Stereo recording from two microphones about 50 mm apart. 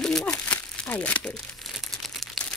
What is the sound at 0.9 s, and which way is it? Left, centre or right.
Speech, left.